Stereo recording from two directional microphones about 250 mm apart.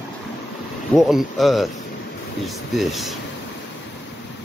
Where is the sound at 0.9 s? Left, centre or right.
Centre.